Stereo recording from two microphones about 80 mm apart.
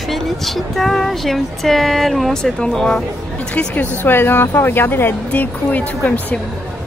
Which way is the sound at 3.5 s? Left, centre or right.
Centre.